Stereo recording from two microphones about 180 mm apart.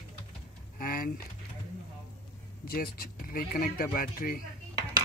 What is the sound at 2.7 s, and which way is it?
Speech, 55° left (ahead or behind).